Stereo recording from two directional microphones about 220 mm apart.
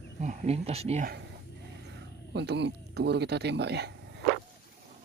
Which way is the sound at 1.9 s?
50° right (ahead or behind).